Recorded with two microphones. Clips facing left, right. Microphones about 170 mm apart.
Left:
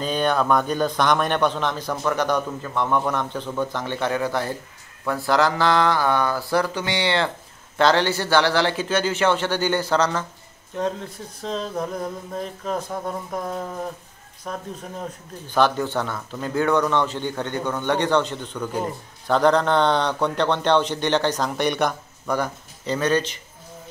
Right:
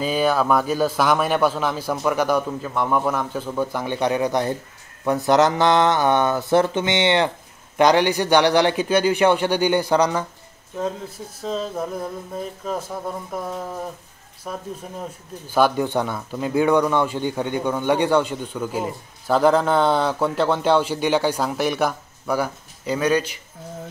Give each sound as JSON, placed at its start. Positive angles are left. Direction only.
{"t": 0.0, "sound": "speech", "side_deg": -5}
{"t": 10.8, "sound": "speech", "side_deg": -5}